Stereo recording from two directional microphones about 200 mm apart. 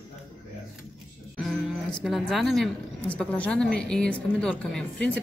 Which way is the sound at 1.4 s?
Centre (ahead or behind).